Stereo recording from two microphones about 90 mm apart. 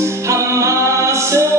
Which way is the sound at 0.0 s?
35° right (ahead or behind).